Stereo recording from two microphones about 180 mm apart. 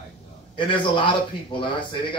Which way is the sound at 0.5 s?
25° left (ahead or behind).